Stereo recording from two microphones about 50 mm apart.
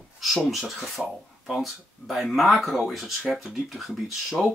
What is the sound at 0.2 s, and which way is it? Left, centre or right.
Speech, centre.